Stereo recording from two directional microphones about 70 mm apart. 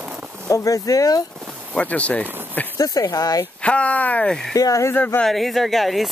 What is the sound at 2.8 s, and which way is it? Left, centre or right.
Speech, left.